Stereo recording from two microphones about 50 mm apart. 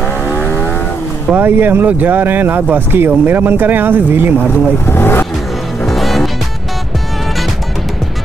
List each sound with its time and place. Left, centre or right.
0.4 s vehicle: left
1.3 s speech: right
4.8 s speech: left
5.9 s music: centre